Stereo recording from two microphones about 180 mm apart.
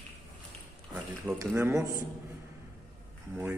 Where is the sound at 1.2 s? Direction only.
10° right (ahead or behind).